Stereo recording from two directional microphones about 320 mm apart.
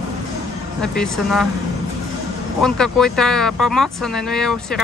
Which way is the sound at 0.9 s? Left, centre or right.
Centre.